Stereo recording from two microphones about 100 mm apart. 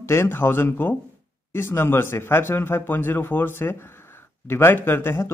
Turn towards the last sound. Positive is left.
turn(degrees=25)  # may be behind; listen again after turning